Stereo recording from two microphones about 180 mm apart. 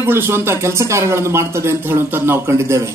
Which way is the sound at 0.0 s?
15° right (ahead or behind).